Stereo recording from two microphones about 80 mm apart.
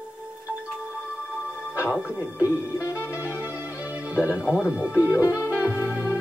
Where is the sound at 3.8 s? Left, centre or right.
Centre.